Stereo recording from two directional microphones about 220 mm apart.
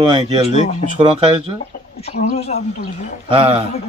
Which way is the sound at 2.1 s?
30° left (ahead or behind).